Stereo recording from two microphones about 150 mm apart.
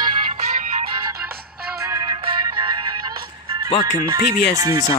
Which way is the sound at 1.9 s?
30° right (ahead or behind).